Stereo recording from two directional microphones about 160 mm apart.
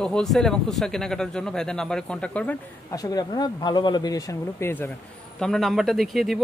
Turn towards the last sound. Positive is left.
turn(degrees=0)  # may be behind; listen again after turning